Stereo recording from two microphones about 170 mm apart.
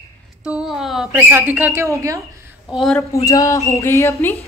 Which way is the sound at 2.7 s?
Centre (ahead or behind).